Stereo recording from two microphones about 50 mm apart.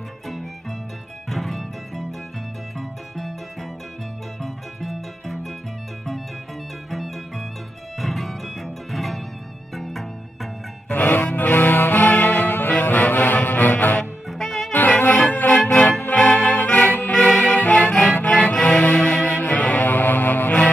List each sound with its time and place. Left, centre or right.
0.3 s music: centre
4.4 s music: centre
6.9 s music: centre
10.9 s music: left
14.4 s music: centre
14.7 s music: left